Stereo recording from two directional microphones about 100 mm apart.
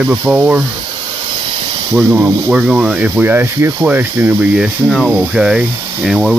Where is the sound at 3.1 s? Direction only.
20° right (ahead or behind).